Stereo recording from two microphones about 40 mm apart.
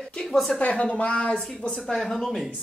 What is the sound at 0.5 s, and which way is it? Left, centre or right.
Speech, left.